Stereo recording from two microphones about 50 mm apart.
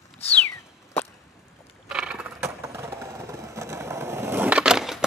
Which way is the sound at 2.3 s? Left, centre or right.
Right.